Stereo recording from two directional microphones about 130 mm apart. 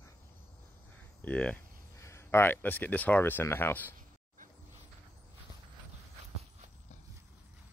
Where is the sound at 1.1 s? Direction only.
10° left (ahead or behind).